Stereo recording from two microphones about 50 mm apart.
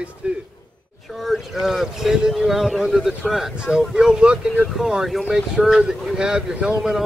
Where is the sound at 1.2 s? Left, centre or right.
Centre.